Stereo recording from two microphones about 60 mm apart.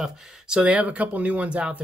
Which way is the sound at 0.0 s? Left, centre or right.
Centre.